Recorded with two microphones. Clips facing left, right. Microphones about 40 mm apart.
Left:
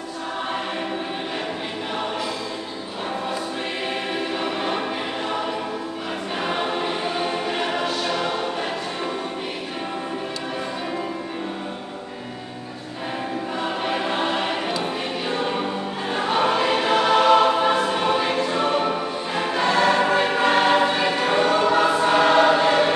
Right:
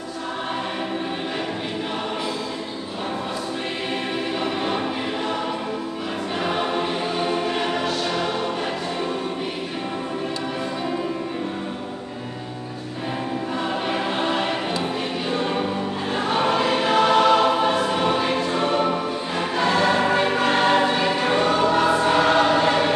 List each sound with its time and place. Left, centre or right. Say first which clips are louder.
4.4 s choir: right 1 dB; centre
6.4 s choir: right 1 dB; centre
13.8 s choir: left 2 dB; centre
15.3 s music: right 1 dB; centre
16.2 s choir: left 1 dB; centre